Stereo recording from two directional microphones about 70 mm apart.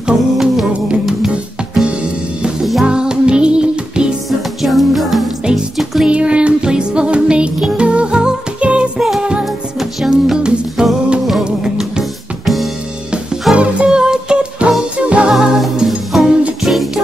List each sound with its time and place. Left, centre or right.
0.0 s music: centre
4.3 s music: centre
13.6 s music: centre
15.3 s music: centre